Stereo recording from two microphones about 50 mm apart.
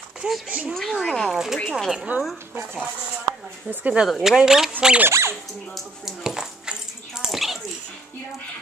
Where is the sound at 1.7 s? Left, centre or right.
Centre.